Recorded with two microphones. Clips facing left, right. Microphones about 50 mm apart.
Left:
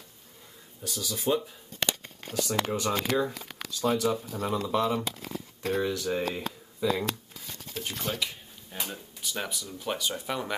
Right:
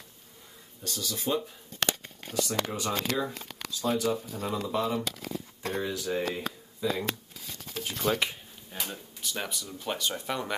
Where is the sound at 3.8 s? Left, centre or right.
Left.